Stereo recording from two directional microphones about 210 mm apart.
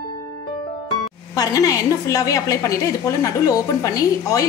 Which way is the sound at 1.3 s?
15° left (ahead or behind).